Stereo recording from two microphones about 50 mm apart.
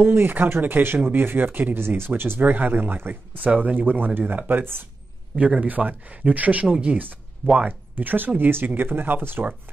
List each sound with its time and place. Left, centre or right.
0.0 s speech: right
5.6 s speech: right